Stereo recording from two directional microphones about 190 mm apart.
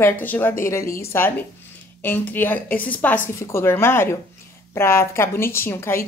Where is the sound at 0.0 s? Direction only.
10° left (ahead or behind).